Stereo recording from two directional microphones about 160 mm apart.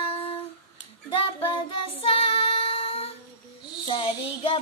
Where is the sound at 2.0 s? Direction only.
35° left (ahead or behind).